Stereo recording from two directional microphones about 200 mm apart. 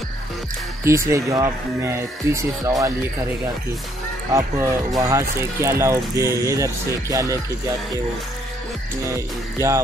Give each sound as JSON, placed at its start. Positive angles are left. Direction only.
{"t": 0.8, "sound": "speech", "side_deg": -15}
{"t": 4.3, "sound": "speech", "side_deg": -15}
{"t": 9.1, "sound": "speech", "side_deg": -15}